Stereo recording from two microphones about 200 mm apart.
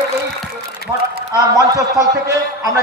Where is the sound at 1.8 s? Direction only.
15° right (ahead or behind).